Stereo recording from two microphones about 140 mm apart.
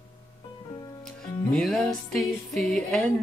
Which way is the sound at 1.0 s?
5° left (ahead or behind).